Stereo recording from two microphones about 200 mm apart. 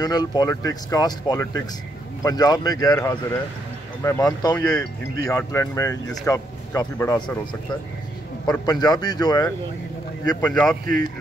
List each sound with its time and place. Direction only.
0.0 s speech: 20° left (ahead or behind)
8.5 s speech: 20° left (ahead or behind)
10.4 s speech: 5° left (ahead or behind)